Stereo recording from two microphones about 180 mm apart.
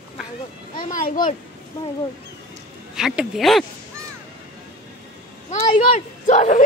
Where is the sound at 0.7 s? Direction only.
50° left (ahead or behind).